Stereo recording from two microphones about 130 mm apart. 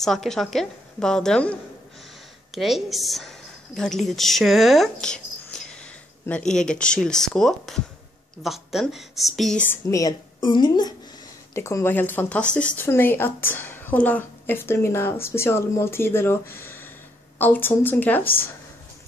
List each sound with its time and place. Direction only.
0.0 s a woman's voice: 5° left (ahead or behind)
9.6 s a woman's voice: 20° left (ahead or behind)
11.5 s a woman's voice: 20° left (ahead or behind)